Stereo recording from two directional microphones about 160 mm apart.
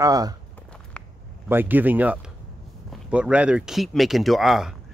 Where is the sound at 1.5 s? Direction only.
10° right (ahead or behind).